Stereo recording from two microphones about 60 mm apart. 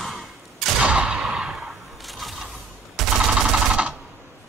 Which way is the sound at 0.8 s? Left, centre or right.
Centre.